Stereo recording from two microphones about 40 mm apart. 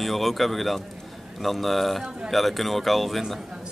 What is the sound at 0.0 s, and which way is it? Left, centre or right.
Speech, centre.